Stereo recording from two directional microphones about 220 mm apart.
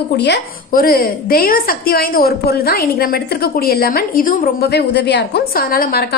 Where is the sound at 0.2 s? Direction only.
45° left (ahead or behind).